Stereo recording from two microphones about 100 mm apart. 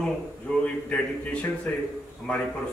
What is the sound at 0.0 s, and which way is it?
A man's voice, 5° left (ahead or behind).